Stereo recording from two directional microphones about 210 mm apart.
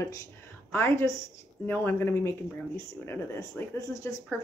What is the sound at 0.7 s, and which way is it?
Speech, 10° left (ahead or behind).